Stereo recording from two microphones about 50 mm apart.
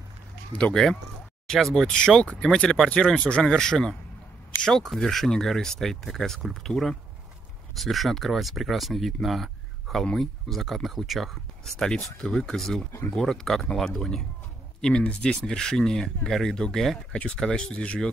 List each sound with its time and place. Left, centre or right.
1.5 s speech: centre
2.0 s speech: centre
15.5 s speech: centre